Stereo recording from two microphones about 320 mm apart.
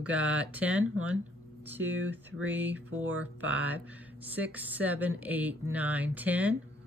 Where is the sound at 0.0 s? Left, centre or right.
Centre.